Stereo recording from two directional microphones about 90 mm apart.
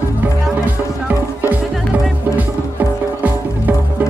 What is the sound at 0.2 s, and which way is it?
Music, 20° right (ahead or behind).